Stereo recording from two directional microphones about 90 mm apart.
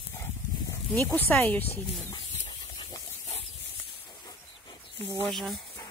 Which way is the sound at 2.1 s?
55° left (ahead or behind).